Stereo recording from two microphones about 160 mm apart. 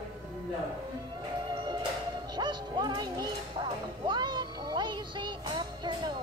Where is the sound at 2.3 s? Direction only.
25° right (ahead or behind).